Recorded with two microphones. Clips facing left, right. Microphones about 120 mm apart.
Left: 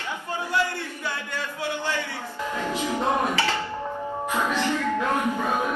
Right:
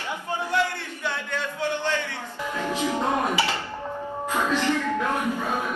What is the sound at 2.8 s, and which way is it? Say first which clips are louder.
Music: even; 15° right (ahead or behind).